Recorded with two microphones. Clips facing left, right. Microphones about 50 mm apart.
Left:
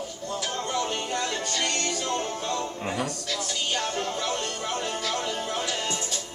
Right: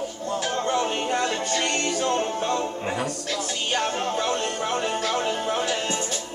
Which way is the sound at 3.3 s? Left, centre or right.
Right.